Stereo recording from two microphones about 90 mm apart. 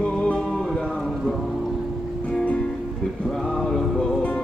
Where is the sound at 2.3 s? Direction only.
10° left (ahead or behind).